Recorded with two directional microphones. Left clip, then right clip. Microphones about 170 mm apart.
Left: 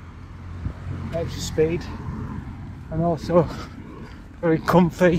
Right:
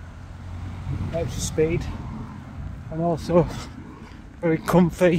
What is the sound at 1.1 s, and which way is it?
Speech, 15° right (ahead or behind).